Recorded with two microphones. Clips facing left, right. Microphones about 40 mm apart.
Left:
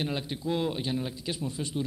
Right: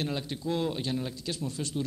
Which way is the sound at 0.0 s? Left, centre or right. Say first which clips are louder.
Left 1 dB; centre.